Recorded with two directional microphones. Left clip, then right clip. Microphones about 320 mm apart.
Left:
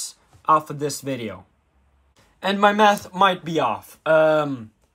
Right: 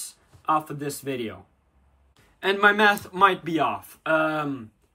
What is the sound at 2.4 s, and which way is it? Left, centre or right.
Speech, centre.